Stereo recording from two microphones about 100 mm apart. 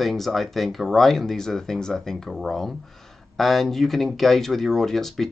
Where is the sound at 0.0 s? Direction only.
Centre (ahead or behind).